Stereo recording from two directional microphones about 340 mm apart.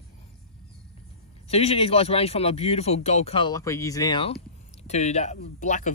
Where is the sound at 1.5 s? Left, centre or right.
Centre.